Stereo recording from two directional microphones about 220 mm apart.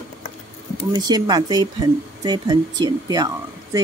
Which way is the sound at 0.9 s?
20° right (ahead or behind).